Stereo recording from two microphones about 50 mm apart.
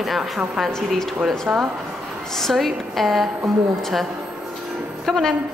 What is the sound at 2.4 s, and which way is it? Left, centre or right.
Speech, centre.